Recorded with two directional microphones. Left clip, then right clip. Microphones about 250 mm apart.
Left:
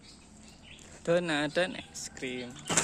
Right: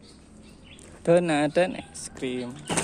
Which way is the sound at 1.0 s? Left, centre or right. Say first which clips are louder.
Right 7 dB; centre.